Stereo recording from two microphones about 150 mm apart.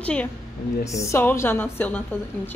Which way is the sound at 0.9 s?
20° left (ahead or behind).